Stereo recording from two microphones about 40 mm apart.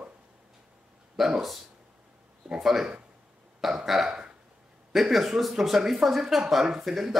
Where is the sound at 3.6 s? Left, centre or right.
Centre.